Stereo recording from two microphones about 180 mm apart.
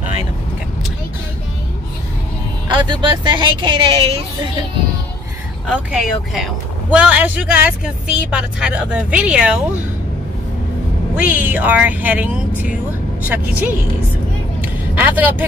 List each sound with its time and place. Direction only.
2.7 s speech: 25° right (ahead or behind)
5.7 s speech: centre (ahead or behind)
11.1 s speech: 10° right (ahead or behind)
14.6 s vehicle: 10° right (ahead or behind)